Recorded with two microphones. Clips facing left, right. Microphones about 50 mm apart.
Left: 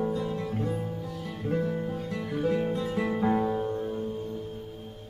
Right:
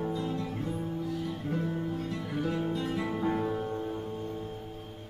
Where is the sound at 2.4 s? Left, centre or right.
Left.